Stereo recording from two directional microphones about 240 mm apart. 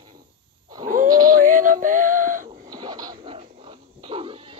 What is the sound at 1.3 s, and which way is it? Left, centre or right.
Synthetic singing, right.